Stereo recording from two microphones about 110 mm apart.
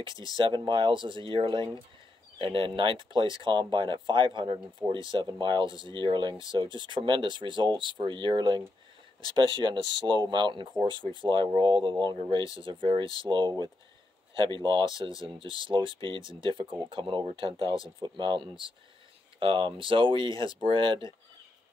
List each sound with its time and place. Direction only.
0.0 s speech: 35° left (ahead or behind)
0.4 s speech: 45° right (ahead or behind)